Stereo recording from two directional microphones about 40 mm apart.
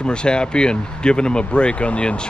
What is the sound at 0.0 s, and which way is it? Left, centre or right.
Speech, left.